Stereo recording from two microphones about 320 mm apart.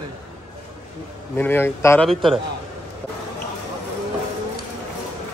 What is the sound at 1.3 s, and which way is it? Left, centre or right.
Speech, centre.